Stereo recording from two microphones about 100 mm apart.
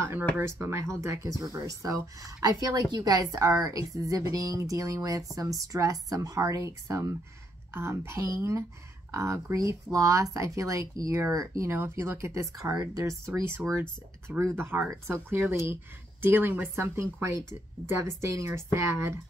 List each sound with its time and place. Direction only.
0.4 s a woman's voice: 25° right (ahead or behind)
13.3 s speech: 20° right (ahead or behind)